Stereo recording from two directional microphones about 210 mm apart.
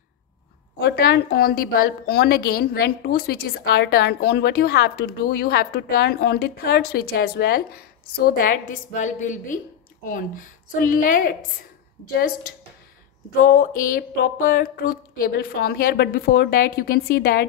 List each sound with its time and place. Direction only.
0.7 s a woman's voice: 50° left (ahead or behind)
13.4 s a woman's voice: 40° left (ahead or behind)